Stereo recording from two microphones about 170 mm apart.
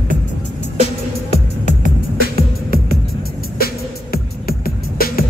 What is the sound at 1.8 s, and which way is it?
Music, 60° left (ahead or behind).